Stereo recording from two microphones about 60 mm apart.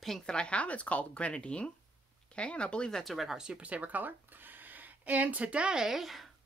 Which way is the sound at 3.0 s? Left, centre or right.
Centre.